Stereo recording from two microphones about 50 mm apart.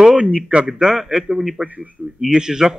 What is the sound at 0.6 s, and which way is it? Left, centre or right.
Speech, centre.